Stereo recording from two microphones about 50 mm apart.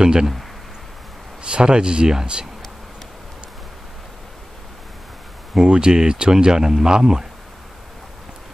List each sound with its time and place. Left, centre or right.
0.0 s speech: centre
1.4 s speech: centre
5.7 s speech: centre